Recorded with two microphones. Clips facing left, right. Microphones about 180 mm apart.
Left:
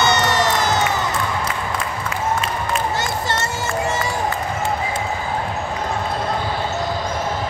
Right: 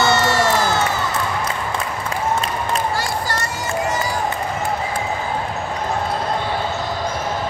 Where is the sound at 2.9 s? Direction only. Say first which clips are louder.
Even; 25° left (ahead or behind).